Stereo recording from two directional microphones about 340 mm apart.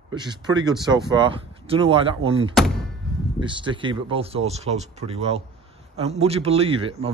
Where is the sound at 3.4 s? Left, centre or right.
Centre.